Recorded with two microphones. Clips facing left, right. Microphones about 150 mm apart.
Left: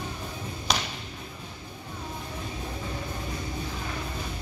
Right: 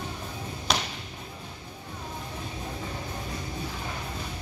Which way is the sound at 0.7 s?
Centre (ahead or behind).